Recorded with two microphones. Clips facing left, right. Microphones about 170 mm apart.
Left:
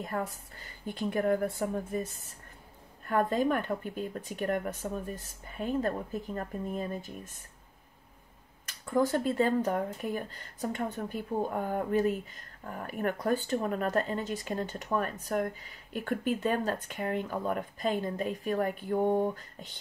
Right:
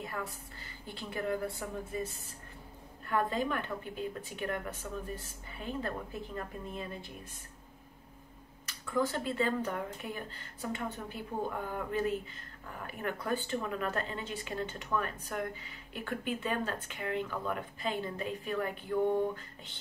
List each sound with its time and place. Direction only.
0.0 s speech: 45° left (ahead or behind)
3.1 s speech: 45° left (ahead or behind)
8.6 s speech: 45° left (ahead or behind)